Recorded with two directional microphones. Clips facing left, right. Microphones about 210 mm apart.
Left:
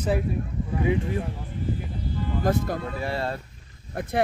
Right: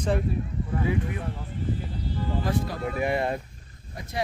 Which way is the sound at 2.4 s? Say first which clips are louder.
Left 7 dB; 45° left (ahead or behind).